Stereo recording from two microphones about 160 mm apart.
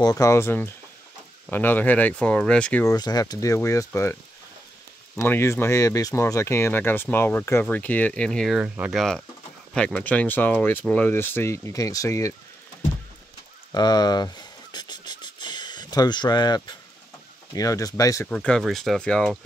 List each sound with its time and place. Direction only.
0.0 s speech: 20° left (ahead or behind)
2.9 s speech: 25° left (ahead or behind); by 9.0 s 10° right (ahead or behind)
9.8 s speech: 5° left (ahead or behind)
13.7 s a sound: 25° left (ahead or behind)
17.6 s speech: 20° left (ahead or behind)
18.3 s speech: 5° left (ahead or behind)